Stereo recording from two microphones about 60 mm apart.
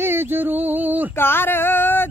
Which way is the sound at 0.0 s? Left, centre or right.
Right.